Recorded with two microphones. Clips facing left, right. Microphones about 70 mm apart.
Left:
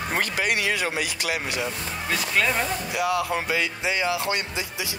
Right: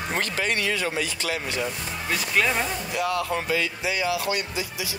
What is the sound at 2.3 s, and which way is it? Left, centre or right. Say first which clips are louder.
Speech: even; centre.